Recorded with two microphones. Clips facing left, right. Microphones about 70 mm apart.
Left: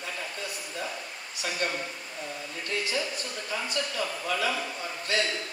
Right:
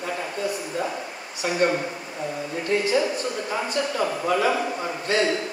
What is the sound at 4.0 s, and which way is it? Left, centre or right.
Speech, right.